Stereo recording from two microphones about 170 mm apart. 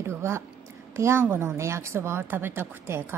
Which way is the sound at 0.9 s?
15° right (ahead or behind).